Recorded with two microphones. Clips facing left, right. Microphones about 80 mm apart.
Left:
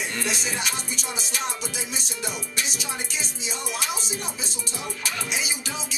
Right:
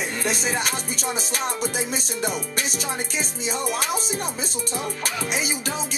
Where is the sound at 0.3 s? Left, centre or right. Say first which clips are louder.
Right 4 dB; right.